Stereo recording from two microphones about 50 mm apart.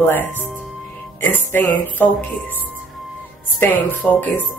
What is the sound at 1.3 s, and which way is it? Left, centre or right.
Speech, left.